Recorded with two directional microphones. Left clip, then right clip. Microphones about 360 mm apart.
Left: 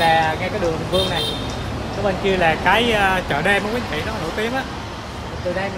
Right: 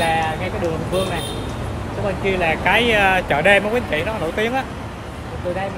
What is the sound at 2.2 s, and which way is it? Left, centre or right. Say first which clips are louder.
Speech: left 1 dB; centre.